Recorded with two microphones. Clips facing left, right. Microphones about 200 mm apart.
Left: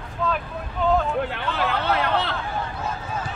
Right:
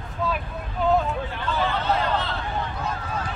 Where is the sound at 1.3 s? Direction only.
70° left (ahead or behind).